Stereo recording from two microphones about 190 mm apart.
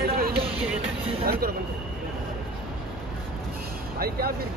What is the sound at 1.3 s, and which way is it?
Speech, 55° right (ahead or behind).